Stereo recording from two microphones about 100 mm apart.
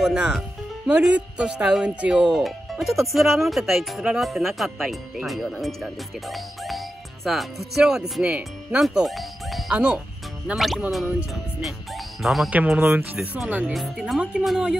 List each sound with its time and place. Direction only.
0.0 s speech: 5° right (ahead or behind)
8.8 s music: centre (ahead or behind)
9.8 s speech: 10° right (ahead or behind)
10.5 s speech: centre (ahead or behind)
12.4 s speech: 10° right (ahead or behind)
13.7 s speech: centre (ahead or behind)